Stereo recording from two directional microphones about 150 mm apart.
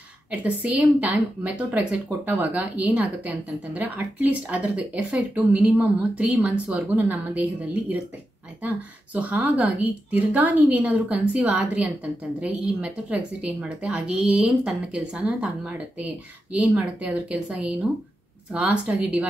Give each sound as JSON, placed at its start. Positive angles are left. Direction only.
{"t": 0.4, "sound": "a woman's voice", "side_deg": -10}
{"t": 8.6, "sound": "a woman's voice", "side_deg": -10}